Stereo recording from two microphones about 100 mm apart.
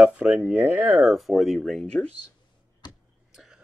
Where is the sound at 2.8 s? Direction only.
45° left (ahead or behind).